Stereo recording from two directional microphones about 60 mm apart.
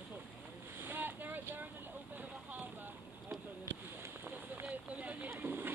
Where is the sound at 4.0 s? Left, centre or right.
Right.